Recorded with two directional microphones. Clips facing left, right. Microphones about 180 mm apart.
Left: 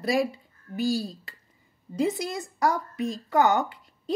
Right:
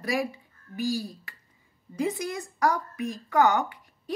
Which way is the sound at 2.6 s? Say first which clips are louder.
Left 1 dB; 25° left (ahead or behind).